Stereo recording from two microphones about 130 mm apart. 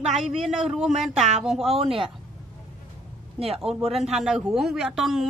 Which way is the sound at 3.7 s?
Centre (ahead or behind).